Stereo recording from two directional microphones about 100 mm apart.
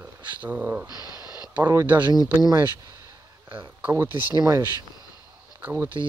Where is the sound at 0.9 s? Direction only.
40° left (ahead or behind).